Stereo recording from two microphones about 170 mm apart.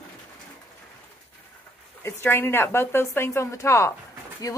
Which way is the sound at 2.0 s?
15° left (ahead or behind).